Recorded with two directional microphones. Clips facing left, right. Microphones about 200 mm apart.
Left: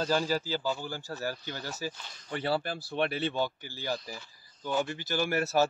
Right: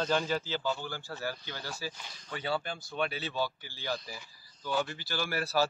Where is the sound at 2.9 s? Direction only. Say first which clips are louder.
Left 5 dB; 55° left (ahead or behind).